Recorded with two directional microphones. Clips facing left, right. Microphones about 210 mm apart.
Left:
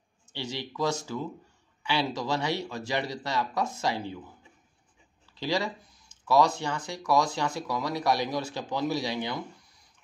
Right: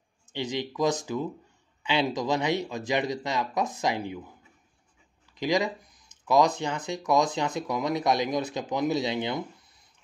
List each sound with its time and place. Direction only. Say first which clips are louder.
0.3 s speech: right 5 dB; 20° right (ahead or behind)
5.3 s speech: right 3 dB; 15° right (ahead or behind)